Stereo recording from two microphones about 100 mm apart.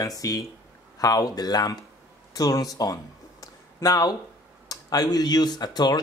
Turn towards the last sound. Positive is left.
turn(degrees=45)  # may be behind; listen again after turning